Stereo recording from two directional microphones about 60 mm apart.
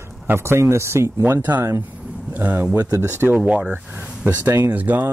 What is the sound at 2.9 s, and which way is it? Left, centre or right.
Speech, right.